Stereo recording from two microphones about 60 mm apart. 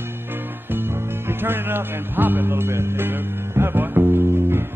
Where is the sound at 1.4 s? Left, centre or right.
Right.